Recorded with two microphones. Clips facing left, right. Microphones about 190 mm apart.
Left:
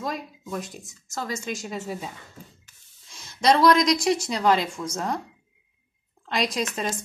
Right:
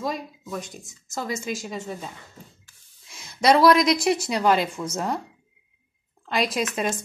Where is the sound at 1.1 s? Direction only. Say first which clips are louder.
Right 2 dB; 10° right (ahead or behind); by 2.0 s 5° left (ahead or behind).